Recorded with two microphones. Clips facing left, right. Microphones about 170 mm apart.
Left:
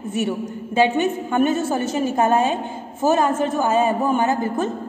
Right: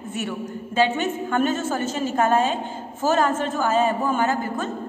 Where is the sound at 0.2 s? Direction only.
20° left (ahead or behind).